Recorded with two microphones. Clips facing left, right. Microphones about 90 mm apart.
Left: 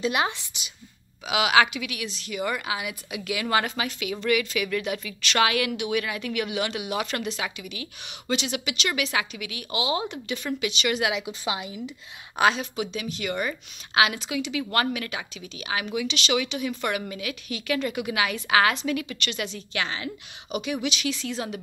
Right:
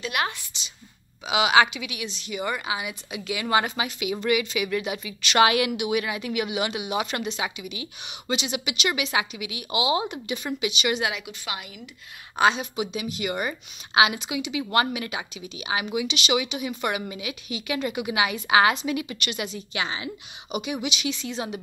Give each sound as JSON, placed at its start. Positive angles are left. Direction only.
{"t": 0.0, "sound": "a woman's voice", "side_deg": 25}
{"t": 1.2, "sound": "a woman's voice", "side_deg": 0}
{"t": 5.4, "sound": "a woman's voice", "side_deg": -15}
{"t": 11.1, "sound": "a woman's voice", "side_deg": 20}
{"t": 12.4, "sound": "a woman's voice", "side_deg": 0}